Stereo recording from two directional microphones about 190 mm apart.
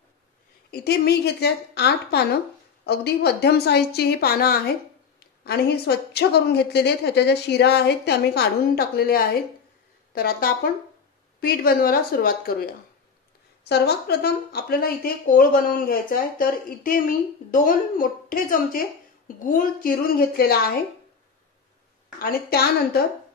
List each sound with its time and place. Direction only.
0.7 s a woman's voice: 55° left (ahead or behind)
22.2 s a woman's voice: 55° left (ahead or behind)